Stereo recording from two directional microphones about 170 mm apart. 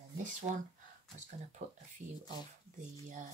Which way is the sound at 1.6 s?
40° right (ahead or behind).